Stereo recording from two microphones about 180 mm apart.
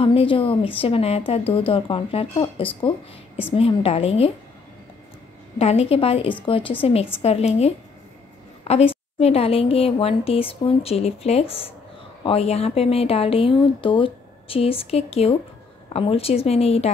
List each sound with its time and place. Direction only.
0.0 s speech: 30° left (ahead or behind)
5.6 s a woman's voice: 35° left (ahead or behind)